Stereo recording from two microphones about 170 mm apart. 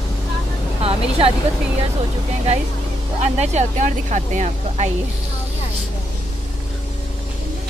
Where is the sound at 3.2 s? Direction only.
40° right (ahead or behind).